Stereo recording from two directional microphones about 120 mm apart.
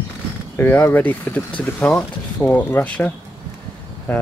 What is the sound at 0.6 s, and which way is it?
Speech, 20° left (ahead or behind).